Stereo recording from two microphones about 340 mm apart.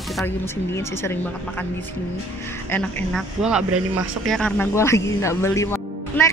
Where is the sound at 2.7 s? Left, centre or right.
Centre.